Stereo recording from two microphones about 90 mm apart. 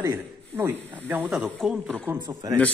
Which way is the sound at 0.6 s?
20° right (ahead or behind).